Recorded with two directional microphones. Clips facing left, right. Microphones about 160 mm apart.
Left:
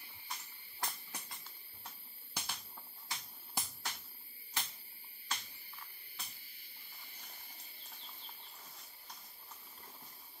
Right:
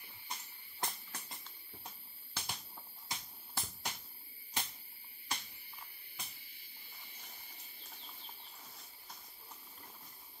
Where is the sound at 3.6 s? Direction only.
15° left (ahead or behind).